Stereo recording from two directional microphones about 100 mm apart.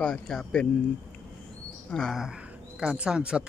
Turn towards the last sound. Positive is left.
turn(degrees=-10)  # may be behind; listen again after turning